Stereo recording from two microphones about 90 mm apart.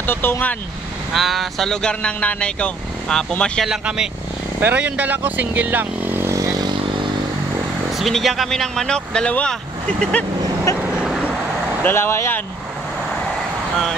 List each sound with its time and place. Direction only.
0.0 s speech: 25° left (ahead or behind)
1.1 s speech: centre (ahead or behind)
3.6 s speech: 5° right (ahead or behind)
4.6 s speech: 20° right (ahead or behind)
6.3 s vehicle: 40° right (ahead or behind)
8.0 s speech: centre (ahead or behind)
10.8 s vehicle: 10° right (ahead or behind)
11.8 s speech: 25° left (ahead or behind)